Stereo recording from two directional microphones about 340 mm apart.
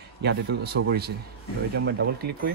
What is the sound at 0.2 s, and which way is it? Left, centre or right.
Speech, right.